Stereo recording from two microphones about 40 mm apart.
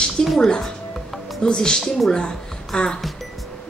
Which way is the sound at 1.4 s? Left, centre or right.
Left.